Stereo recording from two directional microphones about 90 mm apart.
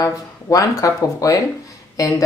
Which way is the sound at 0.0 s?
40° left (ahead or behind).